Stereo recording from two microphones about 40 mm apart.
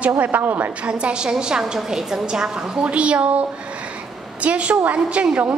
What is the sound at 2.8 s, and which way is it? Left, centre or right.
A woman's voice, right.